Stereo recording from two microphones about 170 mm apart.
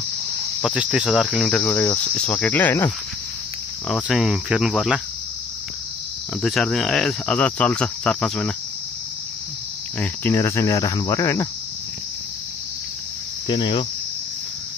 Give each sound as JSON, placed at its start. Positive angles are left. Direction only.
{"t": 0.6, "sound": "cricket", "side_deg": -5}
{"t": 1.6, "sound": "speech", "side_deg": 15}
{"t": 3.9, "sound": "cricket", "side_deg": 0}
{"t": 6.4, "sound": "speech", "side_deg": 0}
{"t": 9.9, "sound": "speech", "side_deg": 15}
{"t": 13.5, "sound": "cricket", "side_deg": 30}